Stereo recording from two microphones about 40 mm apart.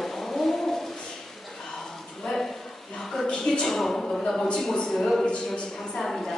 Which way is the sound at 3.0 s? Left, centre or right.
Centre.